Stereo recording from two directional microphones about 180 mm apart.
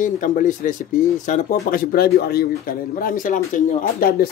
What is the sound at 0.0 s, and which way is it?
Speech, 45° left (ahead or behind).